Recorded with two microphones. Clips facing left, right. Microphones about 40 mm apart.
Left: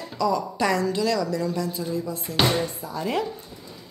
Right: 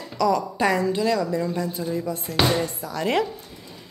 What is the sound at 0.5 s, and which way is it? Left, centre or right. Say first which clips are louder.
A woman's voice: right 2 dB; right.